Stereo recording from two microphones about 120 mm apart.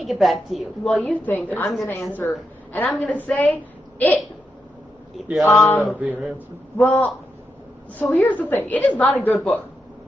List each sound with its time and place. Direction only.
0.0 s a woman's voice: centre (ahead or behind)
1.0 s a woman's voice: 15° left (ahead or behind)
5.4 s speech: 15° left (ahead or behind)
5.9 s speech: 5° right (ahead or behind)
6.3 s a woman's voice: 15° left (ahead or behind)